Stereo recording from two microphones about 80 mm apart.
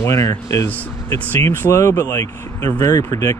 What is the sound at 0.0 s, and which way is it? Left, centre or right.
Speech, left.